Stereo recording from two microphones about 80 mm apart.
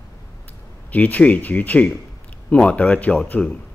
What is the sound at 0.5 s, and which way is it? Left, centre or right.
Speech, left.